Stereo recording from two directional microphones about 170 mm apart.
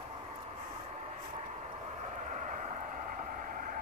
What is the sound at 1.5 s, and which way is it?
Vehicle, 45° right (ahead or behind).